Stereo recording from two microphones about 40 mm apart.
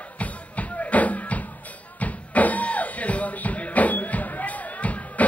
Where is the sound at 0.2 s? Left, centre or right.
Left.